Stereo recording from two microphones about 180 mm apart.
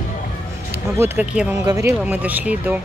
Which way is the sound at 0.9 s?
10° right (ahead or behind).